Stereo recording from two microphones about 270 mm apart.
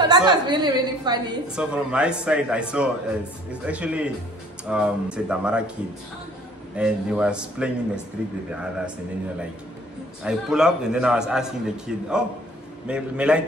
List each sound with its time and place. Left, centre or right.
0.0 s a woman's voice: centre
1.5 s a man's voice: centre
6.8 s a man's voice: centre
10.2 s a man's voice: centre